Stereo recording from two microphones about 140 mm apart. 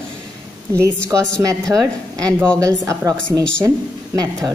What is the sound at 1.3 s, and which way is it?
Speech, 25° right (ahead or behind).